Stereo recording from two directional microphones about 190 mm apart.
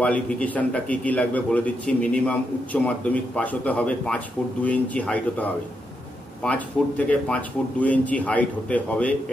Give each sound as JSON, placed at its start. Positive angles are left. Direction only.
{"t": 0.0, "sound": "a man's voice", "side_deg": 5}